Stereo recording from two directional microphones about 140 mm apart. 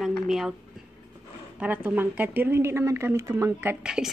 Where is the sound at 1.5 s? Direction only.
10° right (ahead or behind).